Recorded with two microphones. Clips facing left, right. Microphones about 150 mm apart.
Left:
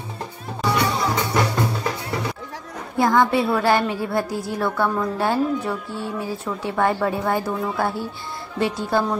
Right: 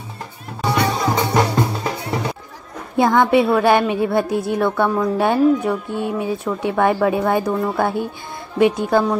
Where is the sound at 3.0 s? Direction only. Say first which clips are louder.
Right 4 dB; 20° right (ahead or behind).